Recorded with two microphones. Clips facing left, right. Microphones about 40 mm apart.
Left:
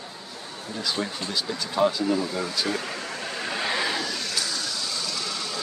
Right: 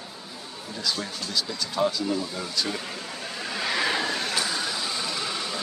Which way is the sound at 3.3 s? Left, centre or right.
Centre.